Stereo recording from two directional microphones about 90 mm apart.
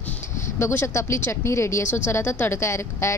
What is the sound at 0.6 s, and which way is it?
A woman's voice, 30° left (ahead or behind).